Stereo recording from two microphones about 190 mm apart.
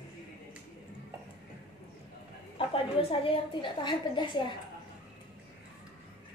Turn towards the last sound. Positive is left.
turn(degrees=25)  # may be behind; listen again after turning